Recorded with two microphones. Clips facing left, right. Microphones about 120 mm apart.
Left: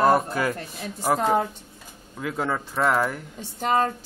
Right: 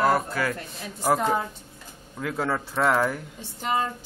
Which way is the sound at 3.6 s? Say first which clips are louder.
Left 4 dB; 45° left (ahead or behind).